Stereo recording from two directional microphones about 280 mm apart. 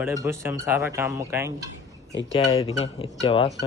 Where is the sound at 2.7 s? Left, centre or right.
Left.